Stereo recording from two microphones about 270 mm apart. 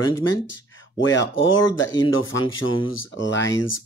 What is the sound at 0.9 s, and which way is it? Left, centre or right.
Speech, left.